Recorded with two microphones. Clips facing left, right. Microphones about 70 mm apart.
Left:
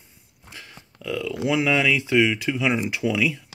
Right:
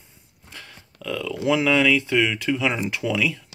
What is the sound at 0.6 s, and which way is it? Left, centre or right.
Speech, centre.